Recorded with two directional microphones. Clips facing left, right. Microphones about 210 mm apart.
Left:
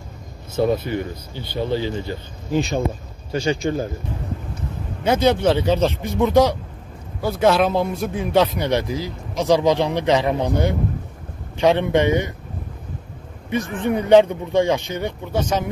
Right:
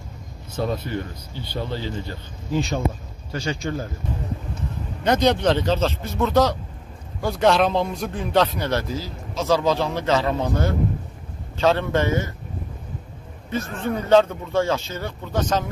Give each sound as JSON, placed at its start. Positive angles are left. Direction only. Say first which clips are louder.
{"t": 1.5, "sound": "a man's voice", "louder": "left 6 dB", "side_deg": 15}
{"t": 5.0, "sound": "a man's voice", "louder": "left 2 dB", "side_deg": 5}
{"t": 13.5, "sound": "a man's voice", "louder": "left 4 dB", "side_deg": 15}